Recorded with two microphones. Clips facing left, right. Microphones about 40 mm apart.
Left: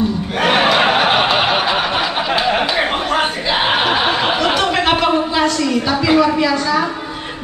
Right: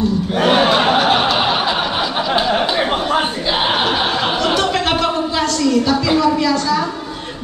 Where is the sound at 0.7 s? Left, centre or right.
Left.